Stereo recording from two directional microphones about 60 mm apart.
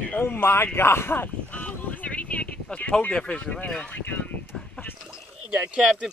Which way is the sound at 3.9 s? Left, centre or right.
Left.